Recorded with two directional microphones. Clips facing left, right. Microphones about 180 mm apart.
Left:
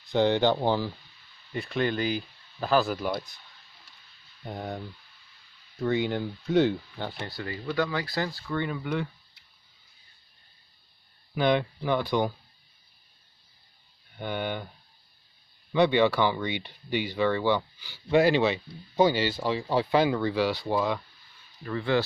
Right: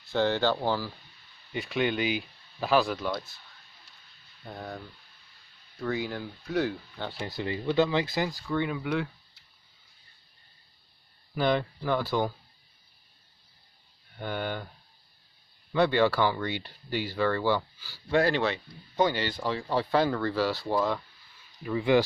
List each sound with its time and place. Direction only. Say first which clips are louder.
0.1 s speech: left 3 dB; 15° left (ahead or behind)
1.5 s speech: even; centre (ahead or behind)
4.5 s speech: left 4 dB; 20° left (ahead or behind)
7.2 s speech: right 3 dB; 20° right (ahead or behind)
8.5 s speech: right 1 dB; 5° right (ahead or behind)
11.8 s speech: left 2 dB; 5° right (ahead or behind)
14.1 s speech: left 1 dB; centre (ahead or behind)
16.0 s speech: left 1 dB; 5° right (ahead or behind)
16.5 s speech: left 2 dB; 60° left (ahead or behind)
17.1 s speech: left 1 dB; 5° right (ahead or behind)
19.8 s speech: left 2 dB; 15° left (ahead or behind)
20.2 s speech: left 2 dB; centre (ahead or behind)
21.6 s speech: right 3 dB; 15° right (ahead or behind)